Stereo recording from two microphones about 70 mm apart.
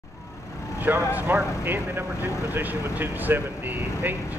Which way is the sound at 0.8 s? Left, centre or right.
Right.